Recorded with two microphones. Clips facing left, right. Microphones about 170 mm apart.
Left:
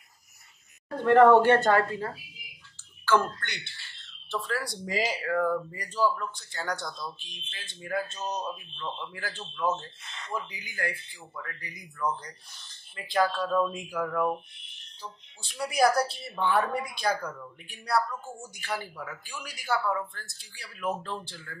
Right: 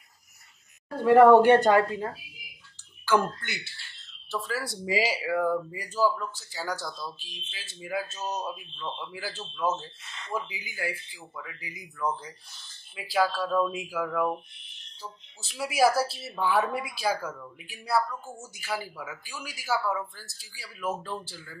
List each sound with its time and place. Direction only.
0.9 s speech: 10° right (ahead or behind)
3.1 s speech: 10° right (ahead or behind)